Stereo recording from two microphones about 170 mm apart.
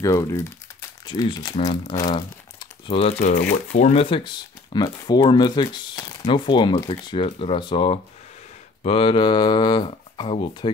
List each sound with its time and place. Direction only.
0.0 s speech: 20° left (ahead or behind); by 4.0 s 45° left (ahead or behind)
4.0 s speech: 30° left (ahead or behind)